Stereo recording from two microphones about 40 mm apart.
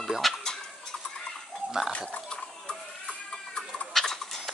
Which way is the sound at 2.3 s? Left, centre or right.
Centre.